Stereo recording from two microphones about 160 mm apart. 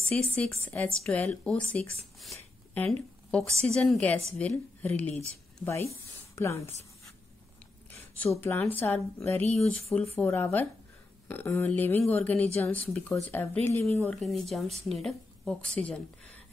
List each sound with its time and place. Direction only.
0.1 s a woman's voice: 10° left (ahead or behind)
7.9 s a sound: 10° left (ahead or behind)
8.4 s a woman's voice: 10° left (ahead or behind)